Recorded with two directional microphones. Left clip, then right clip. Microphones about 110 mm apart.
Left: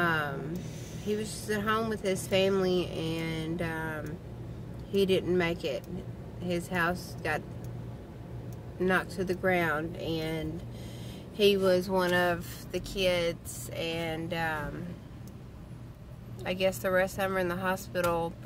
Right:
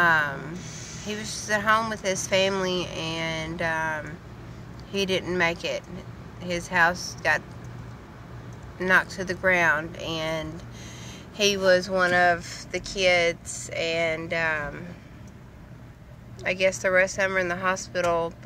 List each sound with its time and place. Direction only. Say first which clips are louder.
0.0 s a sound: right 8 dB; 10° left (ahead or behind)
1.0 s speech: right 1 dB; 15° left (ahead or behind)
8.7 s speech: right 7 dB; 20° left (ahead or behind)
11.9 s speech: right 7 dB; 25° left (ahead or behind)
16.4 s speech: right 6 dB; 30° left (ahead or behind)